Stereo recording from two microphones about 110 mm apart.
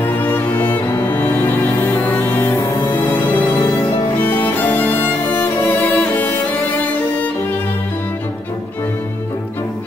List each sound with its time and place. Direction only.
0.0 s music: 15° left (ahead or behind)
4.2 s music: 15° left (ahead or behind)